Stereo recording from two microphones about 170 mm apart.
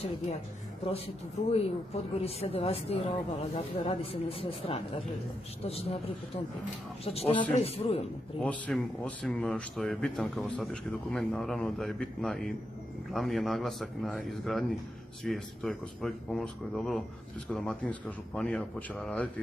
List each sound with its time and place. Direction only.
0.8 s speech: 35° left (ahead or behind)
8.4 s speech: 5° left (ahead or behind)